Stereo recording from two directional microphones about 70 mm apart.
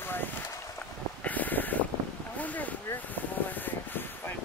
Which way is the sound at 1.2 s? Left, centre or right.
Left.